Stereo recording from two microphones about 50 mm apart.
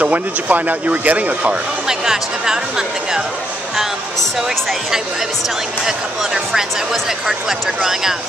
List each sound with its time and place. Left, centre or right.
0.0 s speech: right
1.9 s speech: centre
3.7 s speech: centre
5.9 s speech: centre